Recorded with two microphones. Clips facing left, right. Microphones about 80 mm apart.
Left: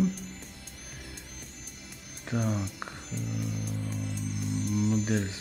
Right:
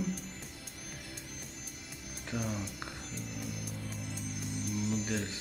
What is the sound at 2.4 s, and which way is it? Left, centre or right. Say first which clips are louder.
Speech: left 6 dB; left.